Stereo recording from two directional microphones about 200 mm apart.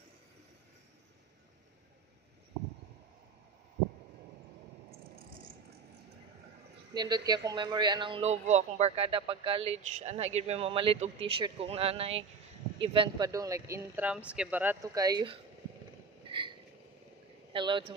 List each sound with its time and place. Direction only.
6.9 s speech: 20° right (ahead or behind)
16.3 s hiccup: 25° right (ahead or behind)
17.5 s speech: 25° right (ahead or behind)